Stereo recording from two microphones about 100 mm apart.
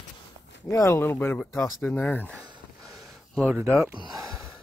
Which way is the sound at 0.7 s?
25° left (ahead or behind).